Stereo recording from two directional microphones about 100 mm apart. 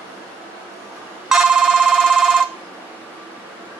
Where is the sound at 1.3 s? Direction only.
5° right (ahead or behind).